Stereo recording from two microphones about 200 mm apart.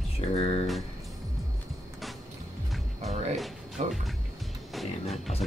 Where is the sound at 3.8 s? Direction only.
35° right (ahead or behind).